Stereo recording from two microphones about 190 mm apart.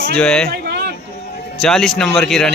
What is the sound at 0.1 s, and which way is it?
Speech, 5° left (ahead or behind).